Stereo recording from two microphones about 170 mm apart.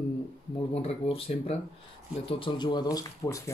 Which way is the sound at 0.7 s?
35° left (ahead or behind).